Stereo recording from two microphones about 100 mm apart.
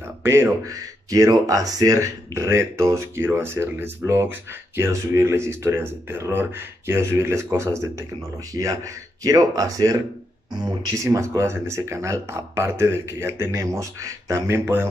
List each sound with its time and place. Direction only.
0.2 s speech: 25° right (ahead or behind)
1.1 s speech: 35° right (ahead or behind)
11.1 s speech: 25° right (ahead or behind)